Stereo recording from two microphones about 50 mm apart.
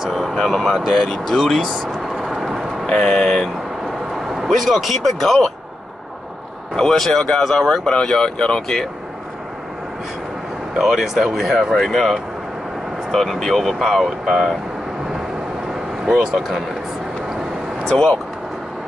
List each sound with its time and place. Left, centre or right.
0.1 s speech: centre
0.7 s speech: centre
2.2 s vehicle: centre
2.9 s speech: centre
4.4 s speech: centre
6.7 s speech: centre
10.8 s speech: centre
16.1 s speech: centre
16.3 s speech: centre
17.8 s speech: centre